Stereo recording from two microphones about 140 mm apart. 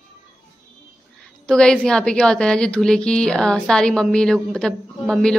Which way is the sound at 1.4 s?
5° left (ahead or behind).